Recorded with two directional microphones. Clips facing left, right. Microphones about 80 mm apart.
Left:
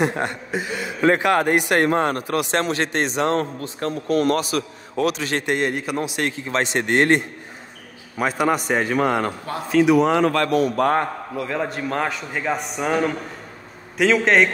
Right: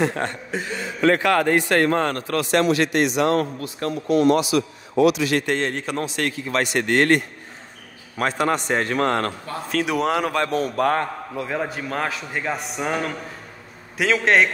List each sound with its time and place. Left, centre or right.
0.0 s a man's voice: centre
2.5 s a man's voice: left
4.1 s a man's voice: left
5.4 s a man's voice: centre
8.2 s a man's voice: centre
10.8 s a man's voice: left
11.6 s a man's voice: centre